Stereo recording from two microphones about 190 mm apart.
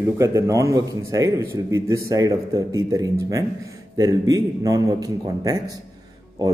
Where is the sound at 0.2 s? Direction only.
15° right (ahead or behind).